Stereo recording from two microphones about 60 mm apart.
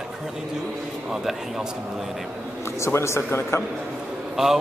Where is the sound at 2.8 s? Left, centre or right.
Left.